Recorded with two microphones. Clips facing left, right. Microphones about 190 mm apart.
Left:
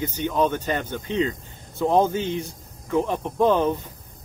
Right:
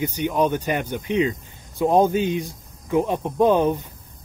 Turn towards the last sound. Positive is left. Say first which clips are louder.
# right 2 dB
turn(degrees=-15)  # may be behind; listen again after turning